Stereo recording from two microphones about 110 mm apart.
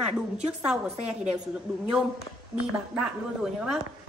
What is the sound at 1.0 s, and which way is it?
Speech, 75° right (ahead or behind).